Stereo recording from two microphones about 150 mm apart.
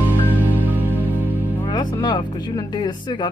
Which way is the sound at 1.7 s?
30° left (ahead or behind).